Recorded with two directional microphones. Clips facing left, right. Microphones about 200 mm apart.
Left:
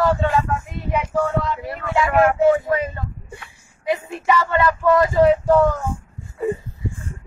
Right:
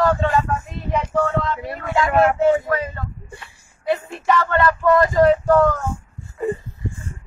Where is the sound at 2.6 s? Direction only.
15° left (ahead or behind).